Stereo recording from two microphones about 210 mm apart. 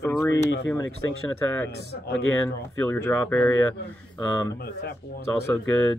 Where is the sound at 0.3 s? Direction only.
60° left (ahead or behind).